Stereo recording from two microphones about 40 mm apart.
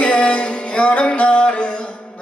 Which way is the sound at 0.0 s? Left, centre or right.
Left.